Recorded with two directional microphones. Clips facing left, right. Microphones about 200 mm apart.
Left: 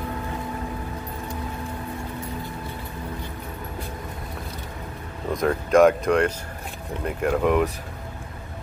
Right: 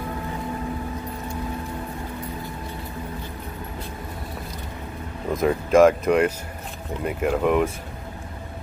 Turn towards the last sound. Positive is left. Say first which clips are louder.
# even
turn(degrees=0)  # may be behind; listen again after turning